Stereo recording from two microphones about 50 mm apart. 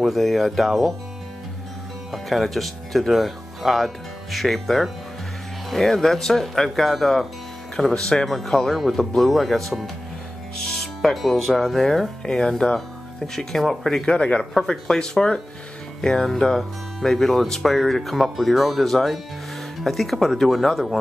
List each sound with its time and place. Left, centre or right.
0.0 s speech: centre
2.1 s speech: centre
14.0 s speech: centre